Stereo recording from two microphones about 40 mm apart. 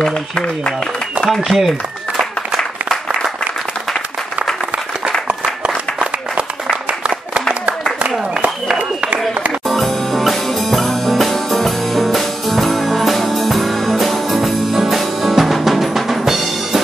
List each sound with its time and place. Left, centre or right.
0.0 s speech: left
1.5 s a sound: centre
9.7 s music: centre